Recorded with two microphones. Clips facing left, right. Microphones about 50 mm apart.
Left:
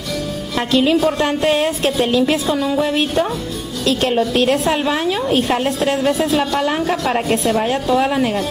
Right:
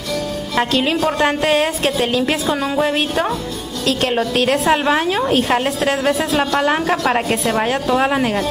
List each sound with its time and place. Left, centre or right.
0.6 s a woman's voice: centre
2.5 s a woman's voice: right
4.3 s a woman's voice: centre
4.8 s a woman's voice: right
5.3 s a woman's voice: centre
6.6 s a woman's voice: centre
7.2 s a woman's voice: centre
7.9 s a woman's voice: right